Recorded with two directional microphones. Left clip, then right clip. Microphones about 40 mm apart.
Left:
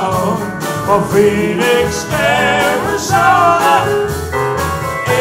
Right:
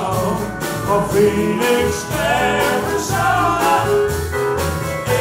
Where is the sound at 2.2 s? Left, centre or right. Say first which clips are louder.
Left 4 dB; left.